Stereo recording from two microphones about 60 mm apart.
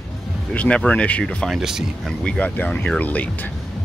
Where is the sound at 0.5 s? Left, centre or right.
Left.